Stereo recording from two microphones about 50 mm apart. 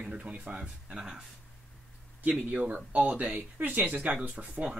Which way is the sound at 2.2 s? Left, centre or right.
Right.